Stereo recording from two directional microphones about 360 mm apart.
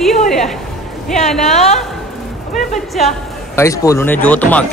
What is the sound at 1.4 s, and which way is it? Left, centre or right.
Speech, centre.